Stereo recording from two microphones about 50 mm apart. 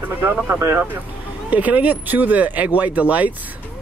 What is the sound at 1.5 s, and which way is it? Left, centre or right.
Speech, right.